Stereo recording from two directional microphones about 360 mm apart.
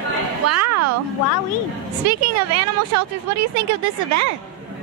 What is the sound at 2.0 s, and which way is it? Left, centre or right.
Speech, right.